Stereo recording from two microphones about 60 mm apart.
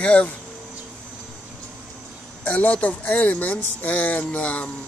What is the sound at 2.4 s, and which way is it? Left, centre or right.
Speech, left.